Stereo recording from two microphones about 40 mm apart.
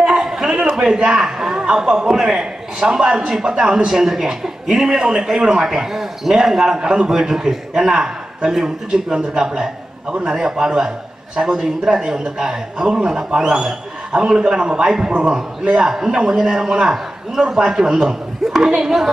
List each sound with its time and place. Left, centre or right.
0.0 s a man's voice: centre